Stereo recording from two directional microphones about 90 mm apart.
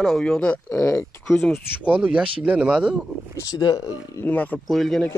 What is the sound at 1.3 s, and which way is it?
Speech, 5° left (ahead or behind).